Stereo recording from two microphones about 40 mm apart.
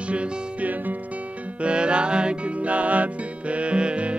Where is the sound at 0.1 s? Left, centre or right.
Right.